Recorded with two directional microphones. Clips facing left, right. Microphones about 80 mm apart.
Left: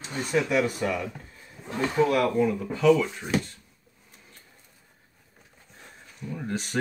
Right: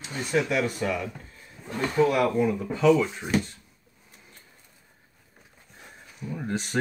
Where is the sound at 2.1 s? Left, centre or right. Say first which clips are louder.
Even; centre.